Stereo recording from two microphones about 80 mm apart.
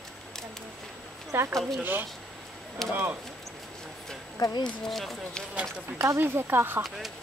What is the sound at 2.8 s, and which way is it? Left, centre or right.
Speech, centre.